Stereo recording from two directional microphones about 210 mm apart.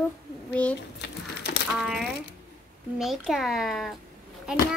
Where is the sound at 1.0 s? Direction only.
55° left (ahead or behind).